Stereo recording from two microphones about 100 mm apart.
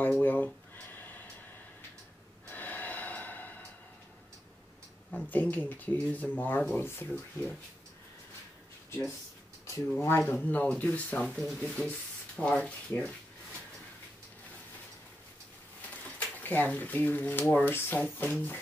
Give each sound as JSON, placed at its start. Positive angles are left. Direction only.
{"t": 0.2, "sound": "speech", "side_deg": 20}
{"t": 0.9, "sound": "a sound", "side_deg": 20}
{"t": 2.5, "sound": "snort", "side_deg": 20}
{"t": 5.3, "sound": "speech", "side_deg": 15}
{"t": 9.9, "sound": "speech", "side_deg": 20}
{"t": 16.2, "sound": "speech", "side_deg": 15}